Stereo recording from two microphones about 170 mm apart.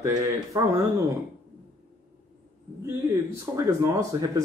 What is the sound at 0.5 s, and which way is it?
Speech, 20° right (ahead or behind).